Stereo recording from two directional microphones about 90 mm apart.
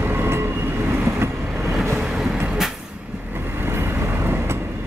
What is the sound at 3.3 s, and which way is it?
Vehicle, 25° right (ahead or behind).